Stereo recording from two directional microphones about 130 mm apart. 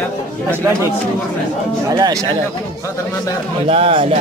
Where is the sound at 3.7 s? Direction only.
45° right (ahead or behind).